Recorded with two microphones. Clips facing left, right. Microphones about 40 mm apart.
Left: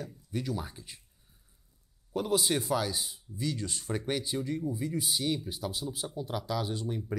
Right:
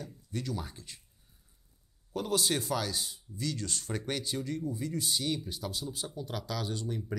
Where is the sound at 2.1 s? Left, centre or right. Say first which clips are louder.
Left 2 dB; centre.